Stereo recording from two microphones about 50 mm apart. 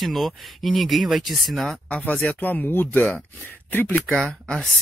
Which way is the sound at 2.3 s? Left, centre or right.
Left.